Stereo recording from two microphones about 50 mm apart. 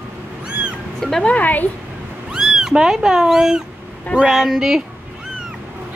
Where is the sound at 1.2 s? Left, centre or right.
Left.